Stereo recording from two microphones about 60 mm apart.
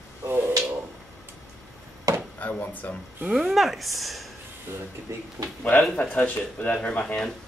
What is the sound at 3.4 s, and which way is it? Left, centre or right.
Speech, centre.